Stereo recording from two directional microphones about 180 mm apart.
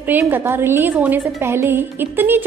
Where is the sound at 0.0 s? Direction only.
10° right (ahead or behind).